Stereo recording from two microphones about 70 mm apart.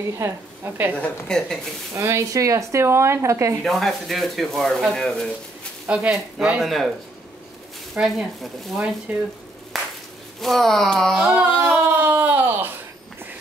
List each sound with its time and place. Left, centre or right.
0.2 s a woman's voice: right
0.9 s a woman's voice: centre
2.0 s speech: right
3.6 s speech: centre
6.0 s speech: centre
6.6 s speech: centre
8.0 s speech: centre
9.7 s clapping: centre
10.4 s speech: centre
11.3 s a sound: right